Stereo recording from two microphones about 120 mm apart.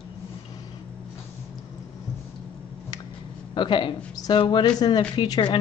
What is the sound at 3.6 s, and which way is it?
Speech, 40° left (ahead or behind).